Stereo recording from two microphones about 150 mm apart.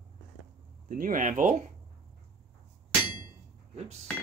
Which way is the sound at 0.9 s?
60° right (ahead or behind).